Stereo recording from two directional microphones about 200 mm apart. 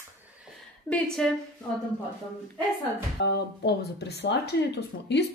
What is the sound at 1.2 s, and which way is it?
Speech, centre (ahead or behind).